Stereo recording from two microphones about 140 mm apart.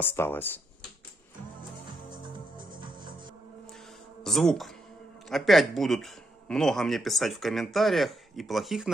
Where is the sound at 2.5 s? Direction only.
35° right (ahead or behind).